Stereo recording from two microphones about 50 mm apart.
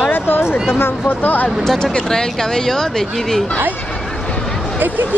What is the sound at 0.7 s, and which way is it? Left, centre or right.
Speech, left.